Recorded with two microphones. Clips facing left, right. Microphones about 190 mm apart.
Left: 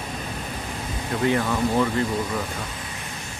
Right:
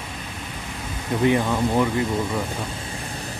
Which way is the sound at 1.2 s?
15° right (ahead or behind).